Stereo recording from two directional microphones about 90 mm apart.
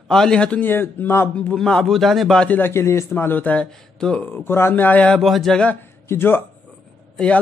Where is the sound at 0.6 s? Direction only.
20° left (ahead or behind).